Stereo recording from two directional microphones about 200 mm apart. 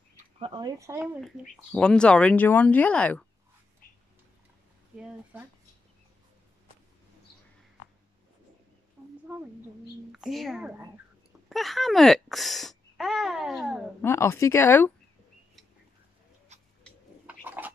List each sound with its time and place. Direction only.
0.1 s speech: 25° right (ahead or behind)
1.2 s speech: centre (ahead or behind)
10.1 s a child's voice: centre (ahead or behind)
14.0 s speech: 15° left (ahead or behind)
16.5 s cat: 35° right (ahead or behind)
17.3 s a sound: 10° right (ahead or behind)